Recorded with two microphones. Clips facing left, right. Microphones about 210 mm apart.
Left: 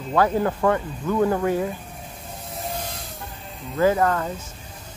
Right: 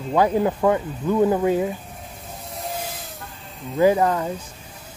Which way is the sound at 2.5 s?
Centre (ahead or behind).